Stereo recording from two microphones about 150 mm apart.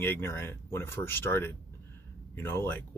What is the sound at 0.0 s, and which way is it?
Speech, 15° left (ahead or behind).